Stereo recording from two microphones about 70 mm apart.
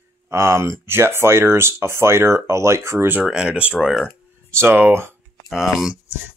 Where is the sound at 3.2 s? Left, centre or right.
Centre.